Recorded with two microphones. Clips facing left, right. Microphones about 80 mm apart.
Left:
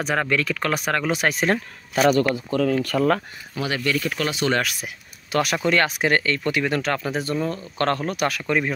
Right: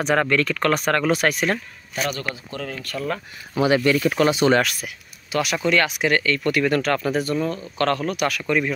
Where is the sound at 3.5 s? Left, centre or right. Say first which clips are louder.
Right 6 dB; right.